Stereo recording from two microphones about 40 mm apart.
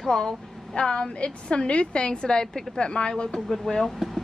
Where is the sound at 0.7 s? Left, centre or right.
Left.